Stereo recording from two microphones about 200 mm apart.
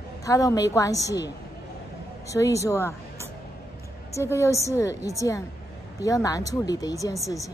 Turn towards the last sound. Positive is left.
turn(degrees=15)  # may be behind; listen again after turning